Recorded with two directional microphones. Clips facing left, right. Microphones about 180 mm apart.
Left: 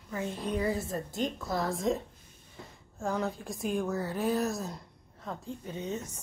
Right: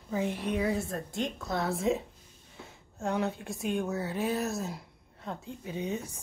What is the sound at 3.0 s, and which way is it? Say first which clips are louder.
Speech: right 1 dB; centre (ahead or behind).